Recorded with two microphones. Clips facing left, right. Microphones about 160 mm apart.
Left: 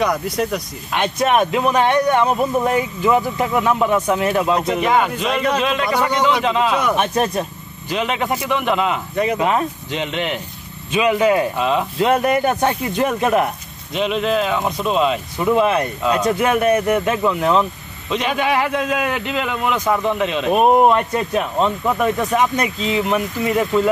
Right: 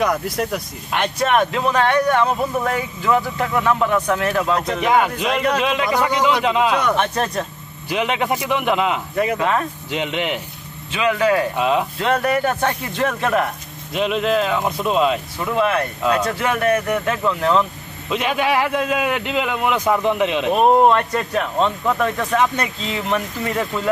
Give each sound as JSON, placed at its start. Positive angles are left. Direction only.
{"t": 0.0, "sound": "speech", "side_deg": -5}
{"t": 0.9, "sound": "speech", "side_deg": 15}
{"t": 4.8, "sound": "a man's voice", "side_deg": -5}
{"t": 6.7, "sound": "speech", "side_deg": 10}
{"t": 7.9, "sound": "a man's voice", "side_deg": -10}
{"t": 9.4, "sound": "speech", "side_deg": 15}
{"t": 9.8, "sound": "a man's voice", "side_deg": -10}
{"t": 10.9, "sound": "speech", "side_deg": 20}
{"t": 11.5, "sound": "a man's voice", "side_deg": -10}
{"t": 12.0, "sound": "speech", "side_deg": 15}
{"t": 13.9, "sound": "speech", "side_deg": 0}
{"t": 15.3, "sound": "speech", "side_deg": 20}
{"t": 18.1, "sound": "a man's voice", "side_deg": -5}
{"t": 20.4, "sound": "speech", "side_deg": 10}